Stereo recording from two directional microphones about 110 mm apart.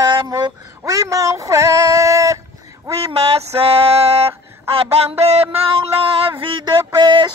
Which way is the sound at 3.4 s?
65° right (ahead or behind).